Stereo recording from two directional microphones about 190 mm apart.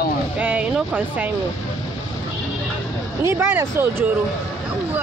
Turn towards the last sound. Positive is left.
turn(degrees=-10)  # may be behind; listen again after turning